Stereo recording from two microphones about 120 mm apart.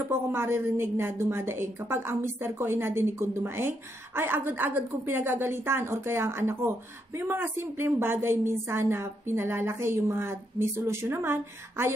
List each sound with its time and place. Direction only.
0.1 s a woman's voice: 20° right (ahead or behind)